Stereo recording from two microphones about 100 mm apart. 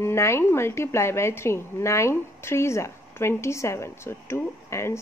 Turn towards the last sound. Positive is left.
turn(degrees=25)  # may be behind; listen again after turning